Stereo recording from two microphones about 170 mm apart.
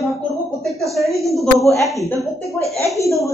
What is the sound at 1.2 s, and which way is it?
Speech, centre (ahead or behind).